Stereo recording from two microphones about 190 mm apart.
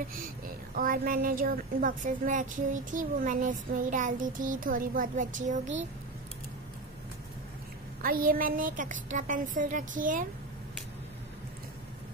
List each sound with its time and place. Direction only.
0.7 s a woman's voice: 50° right (ahead or behind)
8.0 s a woman's voice: 45° right (ahead or behind)